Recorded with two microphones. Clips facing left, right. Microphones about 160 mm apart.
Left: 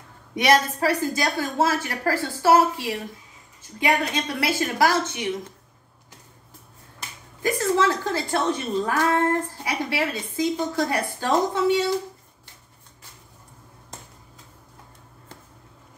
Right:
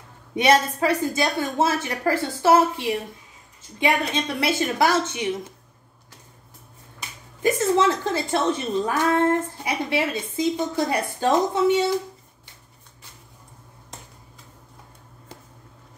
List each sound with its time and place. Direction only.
0.4 s a woman's voice: 20° right (ahead or behind)
7.4 s a woman's voice: 20° right (ahead or behind)